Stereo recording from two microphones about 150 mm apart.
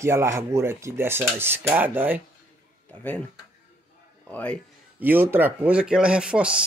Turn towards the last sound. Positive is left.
turn(degrees=-5)  # may be behind; listen again after turning